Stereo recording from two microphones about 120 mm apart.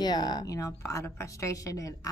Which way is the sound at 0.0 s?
35° left (ahead or behind).